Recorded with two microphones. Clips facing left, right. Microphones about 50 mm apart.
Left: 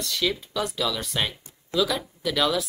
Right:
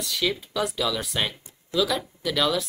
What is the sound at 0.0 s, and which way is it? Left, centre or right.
Speech, centre.